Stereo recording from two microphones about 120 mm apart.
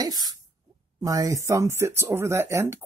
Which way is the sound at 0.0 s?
35° right (ahead or behind).